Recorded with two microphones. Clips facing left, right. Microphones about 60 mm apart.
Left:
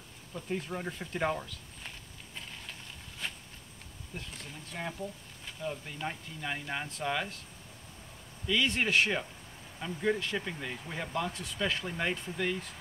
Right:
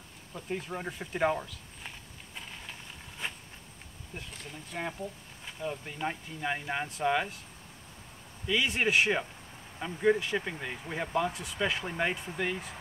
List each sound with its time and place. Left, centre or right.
0.3 s speech: centre
3.2 s a sound: right
4.1 s speech: centre
8.5 s speech: centre